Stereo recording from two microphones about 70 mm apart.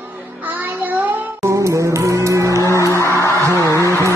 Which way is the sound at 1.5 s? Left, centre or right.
Right.